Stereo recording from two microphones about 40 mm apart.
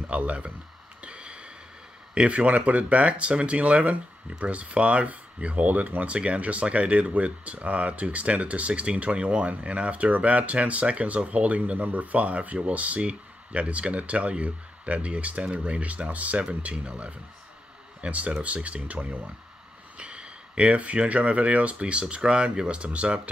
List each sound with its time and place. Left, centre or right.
0.1 s speech: right
1.0 s a sound: right
2.1 s speech: right
6.1 s speech: right
16.7 s speech: right